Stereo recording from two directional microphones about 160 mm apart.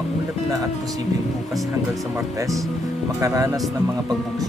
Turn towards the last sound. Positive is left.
turn(degrees=-20)  # may be behind; listen again after turning